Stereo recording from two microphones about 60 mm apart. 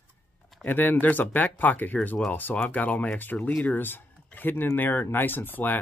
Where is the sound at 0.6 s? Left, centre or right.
Left.